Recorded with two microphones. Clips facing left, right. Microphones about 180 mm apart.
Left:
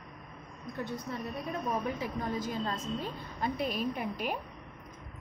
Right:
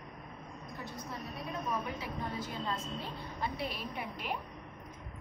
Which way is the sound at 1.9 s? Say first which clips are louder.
Left 5 dB; 45° left (ahead or behind).